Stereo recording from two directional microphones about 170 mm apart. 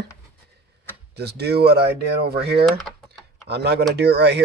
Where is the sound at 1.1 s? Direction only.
75° right (ahead or behind).